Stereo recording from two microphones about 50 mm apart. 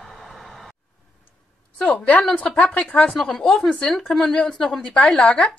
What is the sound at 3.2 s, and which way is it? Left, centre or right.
Speech, centre.